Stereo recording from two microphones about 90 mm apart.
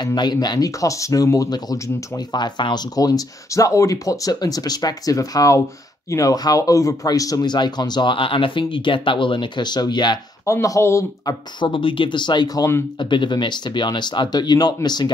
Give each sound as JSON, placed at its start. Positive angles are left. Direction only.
{"t": 0.0, "sound": "speech", "side_deg": 50}
{"t": 3.0, "sound": "speech", "side_deg": 45}
{"t": 10.4, "sound": "speech", "side_deg": 35}
{"t": 11.6, "sound": "speech", "side_deg": 70}